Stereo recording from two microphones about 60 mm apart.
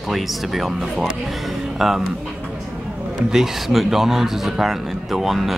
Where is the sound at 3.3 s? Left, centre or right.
Centre.